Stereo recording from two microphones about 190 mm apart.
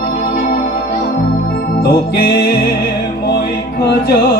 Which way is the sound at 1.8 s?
55° left (ahead or behind).